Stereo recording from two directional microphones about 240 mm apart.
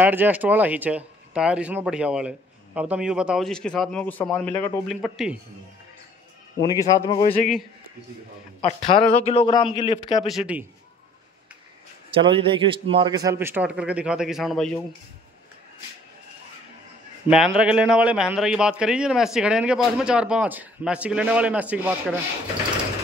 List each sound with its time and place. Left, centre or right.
0.0 s speech: centre
6.6 s speech: centre
8.5 s a man's voice: left
10.2 s speech: centre
12.1 s a man's voice: right; by 15.0 s centre
17.3 s speech: centre